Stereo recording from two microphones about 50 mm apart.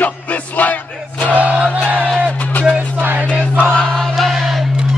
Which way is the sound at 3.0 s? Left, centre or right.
Right.